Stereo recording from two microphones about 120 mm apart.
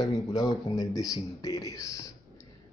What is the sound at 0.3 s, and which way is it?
Speech, 35° left (ahead or behind).